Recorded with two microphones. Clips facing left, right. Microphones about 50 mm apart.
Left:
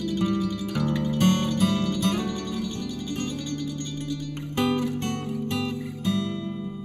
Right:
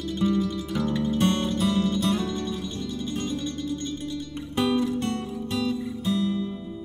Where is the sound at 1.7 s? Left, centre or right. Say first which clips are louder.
Right 1 dB; left.